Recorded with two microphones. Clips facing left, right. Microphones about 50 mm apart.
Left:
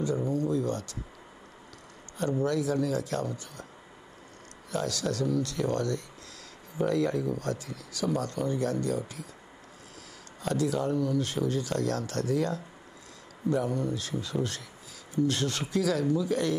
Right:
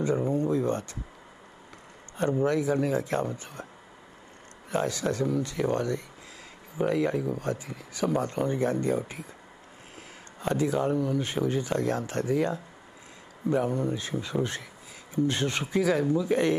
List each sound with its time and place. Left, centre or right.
0.0 s a sound: right
2.1 s speech: right
4.6 s speech: right
10.4 s speech: right